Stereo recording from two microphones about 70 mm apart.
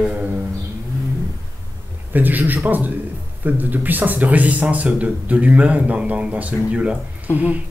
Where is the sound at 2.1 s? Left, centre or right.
Right.